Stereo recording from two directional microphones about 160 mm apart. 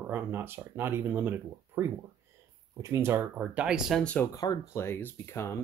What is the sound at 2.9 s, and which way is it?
Speech, 15° right (ahead or behind).